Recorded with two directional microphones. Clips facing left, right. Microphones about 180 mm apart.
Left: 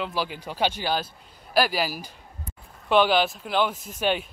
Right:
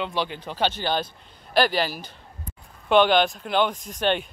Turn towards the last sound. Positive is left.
turn(degrees=5)  # may be behind; listen again after turning